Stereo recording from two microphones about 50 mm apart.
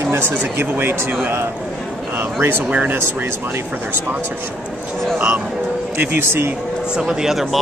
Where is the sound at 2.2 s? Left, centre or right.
Right.